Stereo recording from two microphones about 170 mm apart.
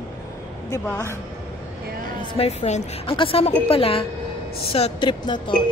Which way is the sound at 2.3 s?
40° left (ahead or behind).